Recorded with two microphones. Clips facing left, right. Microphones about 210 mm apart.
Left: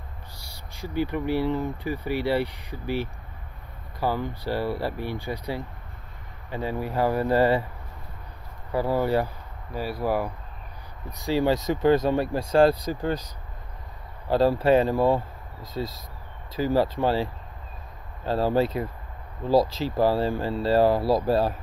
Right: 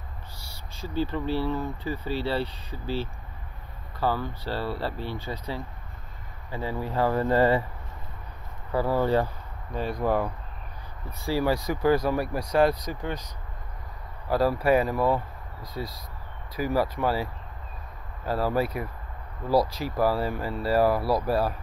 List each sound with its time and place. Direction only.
0.5 s speech: 15° left (ahead or behind)
6.5 s speech: 15° left (ahead or behind)
8.7 s speech: 15° left (ahead or behind)